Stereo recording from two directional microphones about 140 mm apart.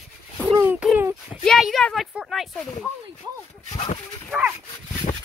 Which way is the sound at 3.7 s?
50° left (ahead or behind).